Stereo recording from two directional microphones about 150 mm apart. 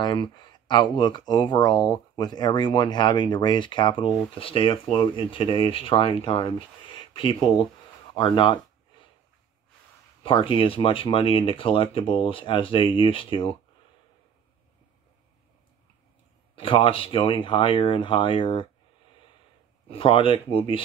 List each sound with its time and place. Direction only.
0.0 s speech: 30° left (ahead or behind)
10.2 s speech: 35° left (ahead or behind)
16.5 s speech: 35° left (ahead or behind)
19.9 s speech: 35° left (ahead or behind)